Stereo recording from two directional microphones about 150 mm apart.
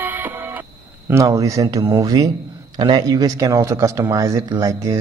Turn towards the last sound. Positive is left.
turn(degrees=-20)  # may be behind; listen again after turning